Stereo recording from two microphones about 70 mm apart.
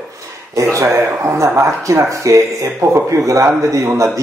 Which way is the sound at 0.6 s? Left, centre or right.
Right.